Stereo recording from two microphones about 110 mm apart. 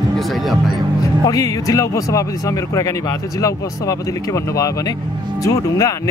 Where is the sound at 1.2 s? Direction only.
35° left (ahead or behind).